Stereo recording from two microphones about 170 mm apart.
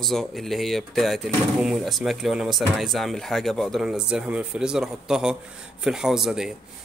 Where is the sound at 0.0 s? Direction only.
Centre (ahead or behind).